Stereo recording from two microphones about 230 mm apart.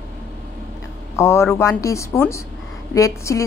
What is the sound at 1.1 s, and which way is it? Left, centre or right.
A woman's voice, centre.